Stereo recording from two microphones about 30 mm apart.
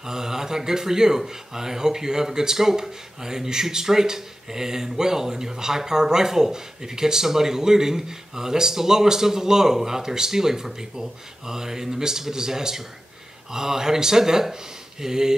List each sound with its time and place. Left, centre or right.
0.0 s a man's voice: centre